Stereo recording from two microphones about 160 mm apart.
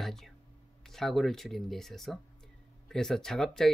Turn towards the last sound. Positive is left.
turn(degrees=5)  # may be behind; listen again after turning